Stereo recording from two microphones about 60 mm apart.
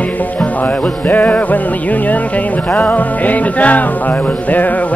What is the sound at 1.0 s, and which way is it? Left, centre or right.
Music, left.